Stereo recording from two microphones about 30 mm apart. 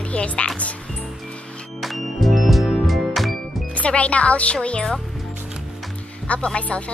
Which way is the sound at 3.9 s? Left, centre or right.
Left.